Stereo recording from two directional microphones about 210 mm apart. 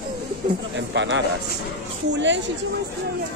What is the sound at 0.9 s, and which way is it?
A man's voice, 60° right (ahead or behind).